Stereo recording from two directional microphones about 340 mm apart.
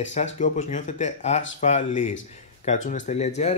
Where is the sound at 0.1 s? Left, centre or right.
Left.